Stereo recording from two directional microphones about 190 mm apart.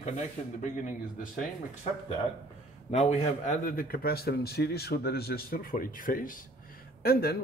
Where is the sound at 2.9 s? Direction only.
35° left (ahead or behind).